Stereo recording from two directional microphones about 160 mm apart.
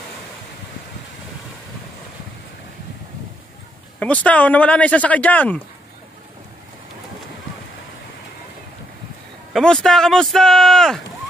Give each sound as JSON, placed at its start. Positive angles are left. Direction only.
{"t": 4.0, "sound": "speech", "side_deg": 10}
{"t": 9.5, "sound": "speech", "side_deg": 5}